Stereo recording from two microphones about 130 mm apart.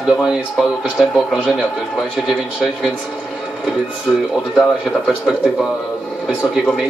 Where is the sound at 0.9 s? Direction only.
Centre (ahead or behind).